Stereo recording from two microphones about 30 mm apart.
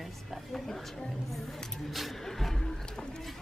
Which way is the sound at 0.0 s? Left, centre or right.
Centre.